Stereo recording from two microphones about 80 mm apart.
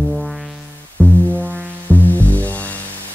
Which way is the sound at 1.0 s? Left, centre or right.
Left.